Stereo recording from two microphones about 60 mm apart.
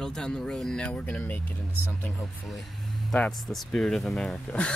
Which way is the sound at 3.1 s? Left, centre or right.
Centre.